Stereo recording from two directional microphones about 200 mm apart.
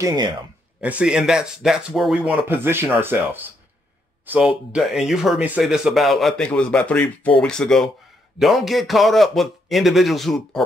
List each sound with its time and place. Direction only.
0.0 s speech: 20° right (ahead or behind)
0.7 s speech: 5° right (ahead or behind)